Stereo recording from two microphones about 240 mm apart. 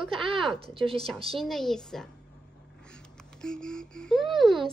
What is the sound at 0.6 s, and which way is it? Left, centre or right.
Speech, right.